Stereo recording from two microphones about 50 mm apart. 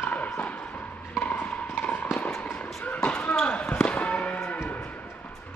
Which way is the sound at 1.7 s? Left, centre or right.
Left.